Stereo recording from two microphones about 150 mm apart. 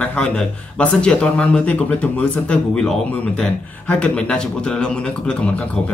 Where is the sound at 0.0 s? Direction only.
5° left (ahead or behind).